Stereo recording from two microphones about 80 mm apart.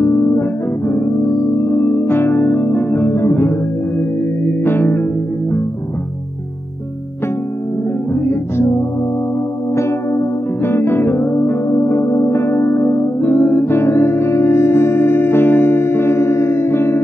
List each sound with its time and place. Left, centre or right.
0.0 s music: left
4.6 s music: left
8.1 s music: left
9.8 s music: left